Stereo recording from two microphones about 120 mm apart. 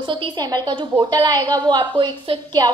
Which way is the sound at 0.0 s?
45° right (ahead or behind).